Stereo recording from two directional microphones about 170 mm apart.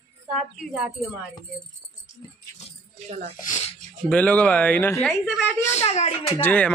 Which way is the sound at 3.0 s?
40° right (ahead or behind).